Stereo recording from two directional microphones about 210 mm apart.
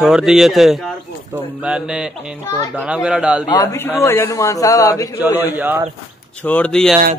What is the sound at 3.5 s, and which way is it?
A man's voice, 15° left (ahead or behind).